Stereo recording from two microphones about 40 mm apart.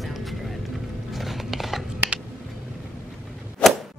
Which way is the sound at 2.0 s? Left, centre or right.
Right.